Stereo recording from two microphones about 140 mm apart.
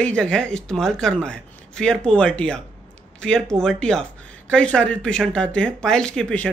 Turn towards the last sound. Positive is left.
turn(degrees=5)  # may be behind; listen again after turning